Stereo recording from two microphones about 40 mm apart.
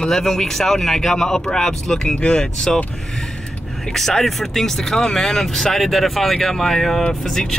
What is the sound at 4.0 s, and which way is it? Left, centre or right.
Speech, centre.